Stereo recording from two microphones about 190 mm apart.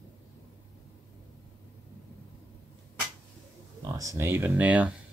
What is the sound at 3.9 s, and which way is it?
Speech, 15° right (ahead or behind).